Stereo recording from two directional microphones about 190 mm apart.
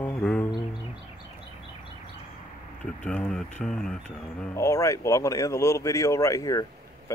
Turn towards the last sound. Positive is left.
turn(degrees=15)  # may be behind; listen again after turning